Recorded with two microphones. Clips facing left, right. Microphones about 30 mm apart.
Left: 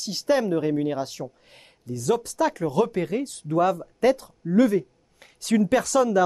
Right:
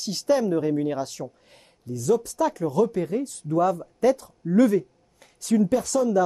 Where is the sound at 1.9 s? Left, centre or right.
Left.